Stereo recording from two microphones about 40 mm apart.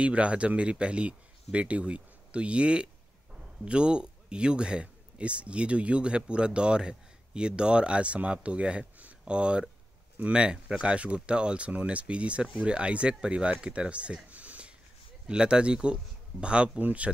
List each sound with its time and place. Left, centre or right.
0.0 s speech: right
10.4 s speech: right
15.2 s speech: right